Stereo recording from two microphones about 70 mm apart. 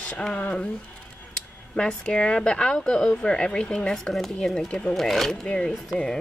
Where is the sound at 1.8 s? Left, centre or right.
Centre.